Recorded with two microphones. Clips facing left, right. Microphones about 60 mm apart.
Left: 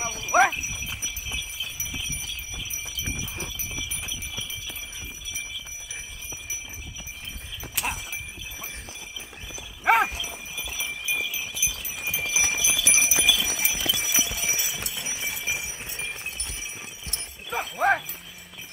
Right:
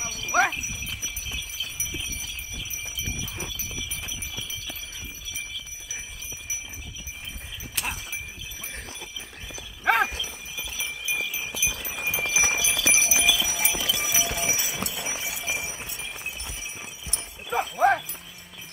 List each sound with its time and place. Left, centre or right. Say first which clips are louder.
0.0 s horse: left 3 dB; left
0.3 s horse: left 3 dB; centre
7.7 s a sound: left 2 dB; centre
9.5 s horse: left 2 dB; centre
10.5 s clip-clop: left 1 dB; centre
11.5 s horse: right 3 dB; right
11.8 s clip-clop: right 3 dB; right
12.1 s clip-clop: right 2 dB; centre
14.2 s clip-clop: right 3 dB; right
15.2 s clip-clop: even; centre
17.5 s dog: right 2 dB; centre